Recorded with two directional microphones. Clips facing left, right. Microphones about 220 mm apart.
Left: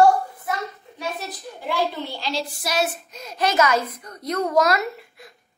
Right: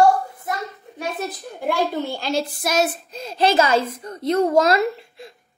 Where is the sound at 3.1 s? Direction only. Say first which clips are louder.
Right 5 dB; 30° right (ahead or behind).